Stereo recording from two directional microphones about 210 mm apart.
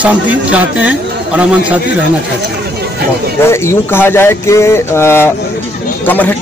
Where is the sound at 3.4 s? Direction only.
10° left (ahead or behind).